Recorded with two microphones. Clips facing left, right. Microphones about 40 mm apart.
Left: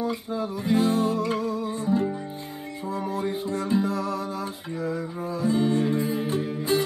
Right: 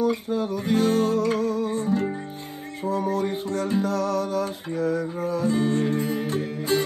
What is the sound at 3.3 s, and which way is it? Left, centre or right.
Music, right.